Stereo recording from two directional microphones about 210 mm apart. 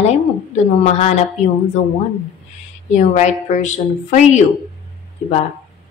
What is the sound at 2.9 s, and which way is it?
A woman's voice, 35° left (ahead or behind).